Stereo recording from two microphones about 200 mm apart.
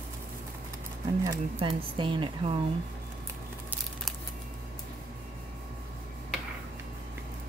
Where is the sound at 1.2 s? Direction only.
20° right (ahead or behind).